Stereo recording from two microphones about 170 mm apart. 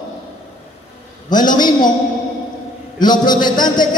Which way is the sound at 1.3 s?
25° left (ahead or behind).